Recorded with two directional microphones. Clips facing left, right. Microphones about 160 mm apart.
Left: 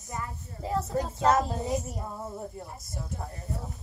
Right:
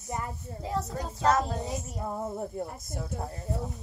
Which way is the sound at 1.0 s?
25° left (ahead or behind).